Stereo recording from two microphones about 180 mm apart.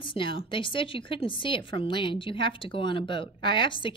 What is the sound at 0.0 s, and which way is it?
A woman's voice, 25° left (ahead or behind).